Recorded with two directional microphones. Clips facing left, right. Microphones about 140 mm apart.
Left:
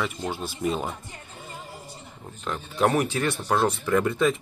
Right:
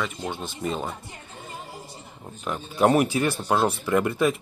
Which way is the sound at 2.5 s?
10° right (ahead or behind).